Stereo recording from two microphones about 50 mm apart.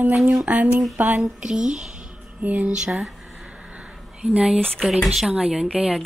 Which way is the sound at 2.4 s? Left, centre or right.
Right.